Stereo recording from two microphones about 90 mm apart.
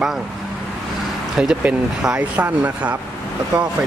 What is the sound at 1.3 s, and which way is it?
Speech, 5° right (ahead or behind).